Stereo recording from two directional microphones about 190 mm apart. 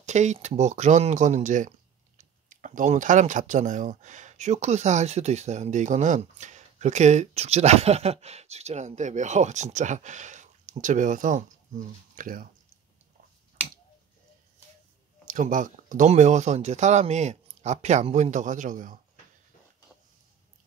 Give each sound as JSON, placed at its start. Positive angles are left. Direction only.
{"t": 0.0, "sound": "speech", "side_deg": -40}
{"t": 15.2, "sound": "speech", "side_deg": -45}